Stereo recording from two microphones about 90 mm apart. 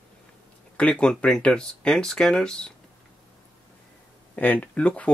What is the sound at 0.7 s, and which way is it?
Speech, 15° left (ahead or behind).